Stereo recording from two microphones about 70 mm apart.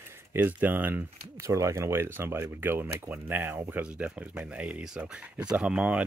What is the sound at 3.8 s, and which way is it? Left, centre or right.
Speech, centre.